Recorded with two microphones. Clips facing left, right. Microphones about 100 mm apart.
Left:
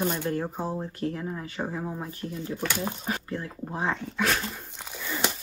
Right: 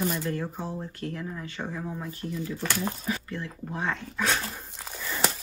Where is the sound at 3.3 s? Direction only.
30° left (ahead or behind).